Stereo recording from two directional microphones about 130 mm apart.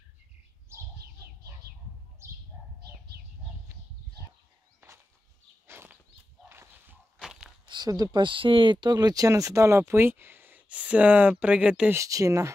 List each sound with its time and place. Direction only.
5.7 s a sound: 20° right (ahead or behind)
7.2 s biting: 5° right (ahead or behind)
7.6 s speech: 35° right (ahead or behind); by 11.9 s 10° right (ahead or behind)
11.9 s speech: 25° right (ahead or behind)